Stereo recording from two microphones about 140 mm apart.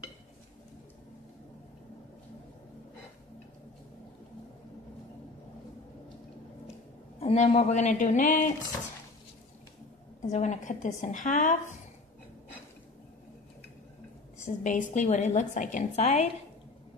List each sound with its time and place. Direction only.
7.2 s a sound: 45° left (ahead or behind)
7.4 s a woman's voice: 55° left (ahead or behind)
10.2 s a woman's voice: 55° left (ahead or behind)
14.4 s a woman's voice: 60° left (ahead or behind)